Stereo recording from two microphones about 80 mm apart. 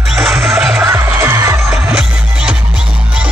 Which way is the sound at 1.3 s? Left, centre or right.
Right.